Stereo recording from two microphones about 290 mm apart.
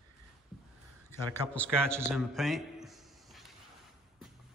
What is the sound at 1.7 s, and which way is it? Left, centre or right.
Speech, centre.